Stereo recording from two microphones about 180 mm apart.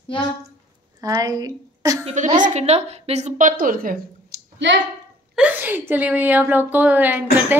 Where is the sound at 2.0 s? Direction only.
40° right (ahead or behind).